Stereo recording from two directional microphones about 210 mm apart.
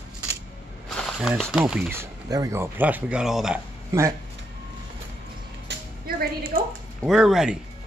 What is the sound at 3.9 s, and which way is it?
Speech, 15° right (ahead or behind).